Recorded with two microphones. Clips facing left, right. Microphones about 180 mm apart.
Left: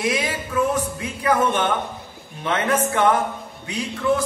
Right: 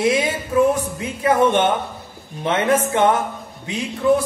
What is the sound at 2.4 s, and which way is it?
Speech, 20° right (ahead or behind).